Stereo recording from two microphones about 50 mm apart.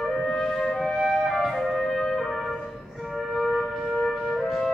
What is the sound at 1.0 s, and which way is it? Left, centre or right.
Music, centre.